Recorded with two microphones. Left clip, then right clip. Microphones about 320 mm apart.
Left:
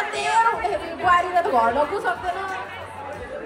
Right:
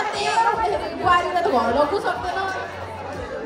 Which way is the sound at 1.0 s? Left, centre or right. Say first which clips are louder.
Even; left.